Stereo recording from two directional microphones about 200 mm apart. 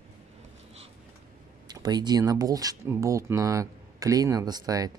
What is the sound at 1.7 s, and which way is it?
Speech, 20° right (ahead or behind).